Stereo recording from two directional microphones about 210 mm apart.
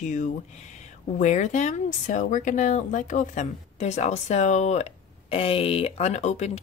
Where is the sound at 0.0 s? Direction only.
35° left (ahead or behind).